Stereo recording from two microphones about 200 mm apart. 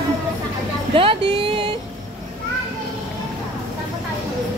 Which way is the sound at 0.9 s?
25° right (ahead or behind).